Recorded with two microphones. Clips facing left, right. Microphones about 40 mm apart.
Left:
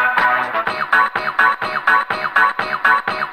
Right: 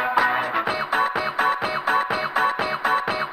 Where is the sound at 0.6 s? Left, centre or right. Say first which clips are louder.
Left 6 dB; left.